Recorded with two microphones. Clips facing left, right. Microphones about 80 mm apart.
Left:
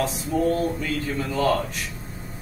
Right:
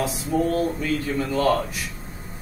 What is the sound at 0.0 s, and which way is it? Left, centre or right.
Speech, centre.